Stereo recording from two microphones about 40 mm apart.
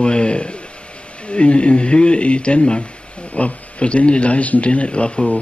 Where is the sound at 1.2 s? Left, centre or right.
Left.